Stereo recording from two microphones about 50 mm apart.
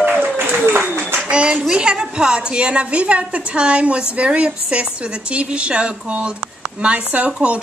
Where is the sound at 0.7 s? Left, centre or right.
Right.